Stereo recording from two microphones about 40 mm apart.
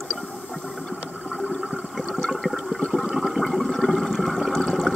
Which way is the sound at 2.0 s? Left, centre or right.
Centre.